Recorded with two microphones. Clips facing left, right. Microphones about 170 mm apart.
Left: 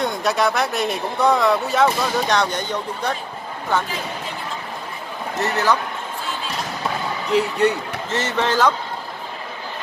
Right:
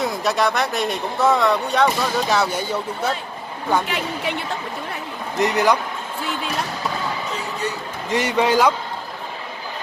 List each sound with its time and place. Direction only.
0.0 s speech: centre (ahead or behind)
3.8 s speech: 75° right (ahead or behind)
5.4 s speech: 15° right (ahead or behind)
7.2 s speech: 65° left (ahead or behind)
8.1 s speech: 15° right (ahead or behind)